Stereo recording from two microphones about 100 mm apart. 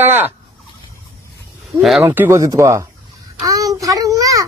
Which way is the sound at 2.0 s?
25° right (ahead or behind).